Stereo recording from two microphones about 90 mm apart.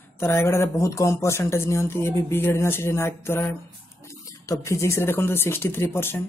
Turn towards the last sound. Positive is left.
turn(degrees=25)  # may be behind; listen again after turning